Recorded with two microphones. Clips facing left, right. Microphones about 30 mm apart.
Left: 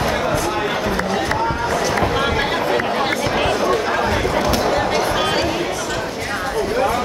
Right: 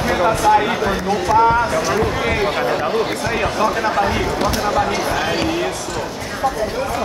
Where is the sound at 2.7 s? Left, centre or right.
Left.